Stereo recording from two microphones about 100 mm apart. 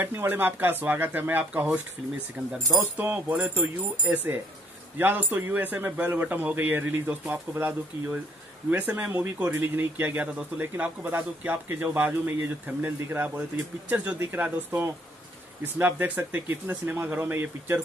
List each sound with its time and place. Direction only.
0.0 s speech: 20° right (ahead or behind)